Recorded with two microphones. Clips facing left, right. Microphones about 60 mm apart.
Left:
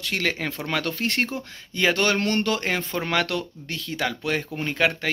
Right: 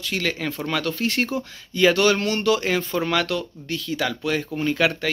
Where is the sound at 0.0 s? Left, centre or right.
Left.